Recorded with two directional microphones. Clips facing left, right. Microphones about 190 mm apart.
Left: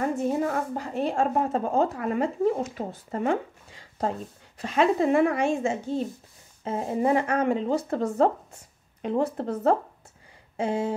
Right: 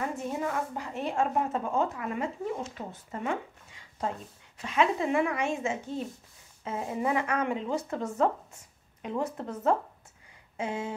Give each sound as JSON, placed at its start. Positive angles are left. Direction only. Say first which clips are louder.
{"t": 0.0, "sound": "speech", "louder": "left 7 dB", "side_deg": 40}